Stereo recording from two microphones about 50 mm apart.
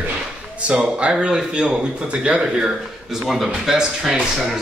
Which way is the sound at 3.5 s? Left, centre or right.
Centre.